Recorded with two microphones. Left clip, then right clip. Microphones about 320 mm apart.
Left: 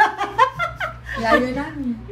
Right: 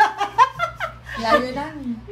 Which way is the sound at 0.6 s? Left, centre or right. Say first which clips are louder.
Left 1 dB; centre.